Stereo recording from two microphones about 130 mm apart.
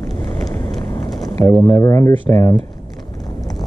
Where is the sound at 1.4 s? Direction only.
25° left (ahead or behind).